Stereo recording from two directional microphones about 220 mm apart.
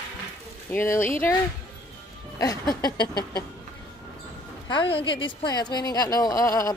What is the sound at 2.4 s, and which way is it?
Speech, 15° left (ahead or behind).